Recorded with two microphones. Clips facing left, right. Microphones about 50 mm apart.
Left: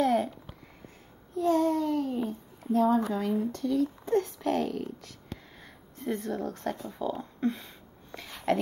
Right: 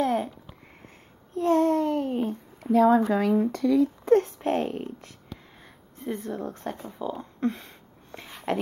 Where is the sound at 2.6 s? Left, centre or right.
Right.